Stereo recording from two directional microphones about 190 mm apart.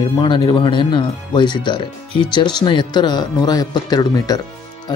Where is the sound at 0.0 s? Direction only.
25° left (ahead or behind).